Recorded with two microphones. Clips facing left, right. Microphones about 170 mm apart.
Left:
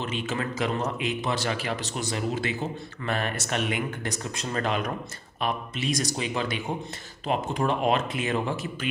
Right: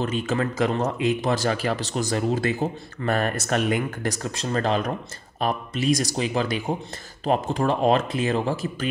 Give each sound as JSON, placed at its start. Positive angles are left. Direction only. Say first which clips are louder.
{"t": 0.0, "sound": "speech", "louder": "right 6 dB", "side_deg": -40}